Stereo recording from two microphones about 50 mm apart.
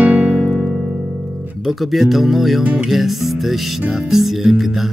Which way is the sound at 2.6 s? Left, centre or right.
Right.